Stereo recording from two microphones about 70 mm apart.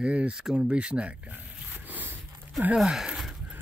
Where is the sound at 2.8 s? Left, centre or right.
Centre.